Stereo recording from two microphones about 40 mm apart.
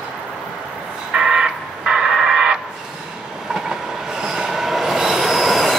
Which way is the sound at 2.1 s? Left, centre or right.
Centre.